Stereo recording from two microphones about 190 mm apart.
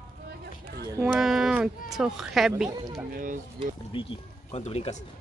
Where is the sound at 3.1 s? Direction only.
45° right (ahead or behind).